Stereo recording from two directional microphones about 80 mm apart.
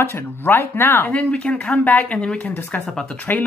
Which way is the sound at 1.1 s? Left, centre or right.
Centre.